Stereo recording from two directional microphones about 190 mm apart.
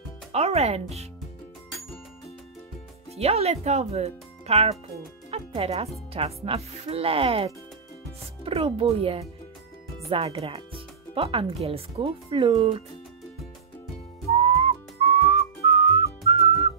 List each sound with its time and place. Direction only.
0.3 s speech: 35° right (ahead or behind)
3.2 s speech: 35° right (ahead or behind)
14.4 s whistling: 35° right (ahead or behind)